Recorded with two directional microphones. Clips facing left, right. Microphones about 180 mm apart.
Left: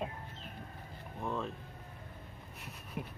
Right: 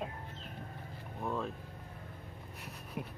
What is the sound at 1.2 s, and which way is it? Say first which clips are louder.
Speech: right 1 dB; 5° right (ahead or behind).